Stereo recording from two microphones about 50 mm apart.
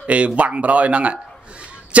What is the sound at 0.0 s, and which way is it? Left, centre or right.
A man's voice, right.